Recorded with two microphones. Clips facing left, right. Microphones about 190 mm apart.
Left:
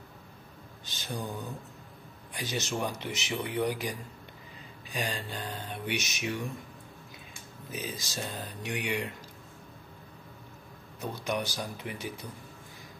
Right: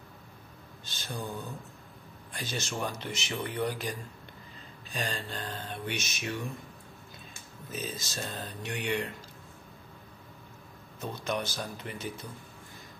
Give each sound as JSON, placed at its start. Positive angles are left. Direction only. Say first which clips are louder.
{"t": 0.8, "sound": "speech", "louder": "left 2 dB", "side_deg": 15}
{"t": 2.3, "sound": "speech", "louder": "left 2 dB", "side_deg": 15}
{"t": 7.7, "sound": "speech", "louder": "even", "side_deg": 15}
{"t": 11.0, "sound": "speech", "louder": "left 1 dB", "side_deg": 15}